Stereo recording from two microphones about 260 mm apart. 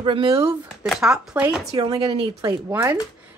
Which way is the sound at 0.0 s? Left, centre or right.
Centre.